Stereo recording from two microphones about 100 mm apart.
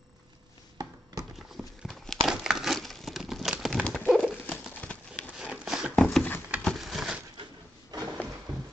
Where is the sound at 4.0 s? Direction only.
15° left (ahead or behind).